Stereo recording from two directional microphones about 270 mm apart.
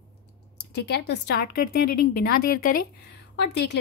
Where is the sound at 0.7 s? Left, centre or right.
Left.